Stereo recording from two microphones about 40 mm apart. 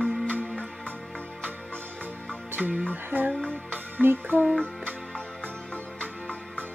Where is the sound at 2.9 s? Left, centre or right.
Right.